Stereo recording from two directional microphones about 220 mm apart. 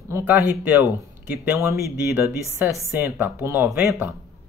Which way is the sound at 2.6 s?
10° right (ahead or behind).